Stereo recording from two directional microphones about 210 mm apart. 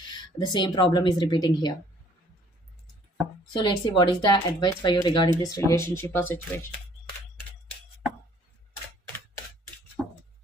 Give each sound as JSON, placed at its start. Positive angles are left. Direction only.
{"t": 0.4, "sound": "a woman's voice", "side_deg": 20}
{"t": 3.6, "sound": "a woman's voice", "side_deg": 20}
{"t": 10.0, "sound": "a sound", "side_deg": 0}